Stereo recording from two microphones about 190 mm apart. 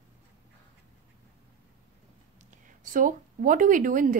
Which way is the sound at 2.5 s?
45° right (ahead or behind).